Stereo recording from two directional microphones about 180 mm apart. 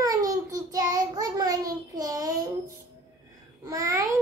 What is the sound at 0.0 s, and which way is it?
Child singing, 20° right (ahead or behind).